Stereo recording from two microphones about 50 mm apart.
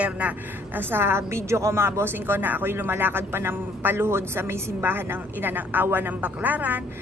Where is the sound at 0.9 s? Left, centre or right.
Right.